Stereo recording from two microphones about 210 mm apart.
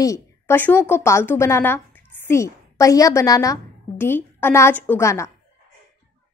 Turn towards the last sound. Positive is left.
turn(degrees=15)  # may be behind; listen again after turning